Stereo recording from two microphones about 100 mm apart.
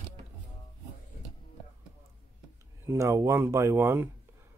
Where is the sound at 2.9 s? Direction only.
30° right (ahead or behind).